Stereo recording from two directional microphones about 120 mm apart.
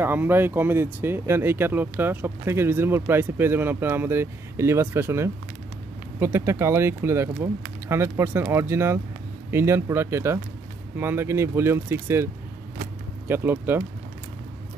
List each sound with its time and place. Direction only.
0.0 s speech: 15° right (ahead or behind)
13.3 s speech: 20° right (ahead or behind)